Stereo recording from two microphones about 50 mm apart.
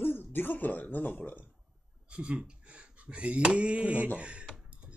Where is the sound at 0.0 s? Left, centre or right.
Left.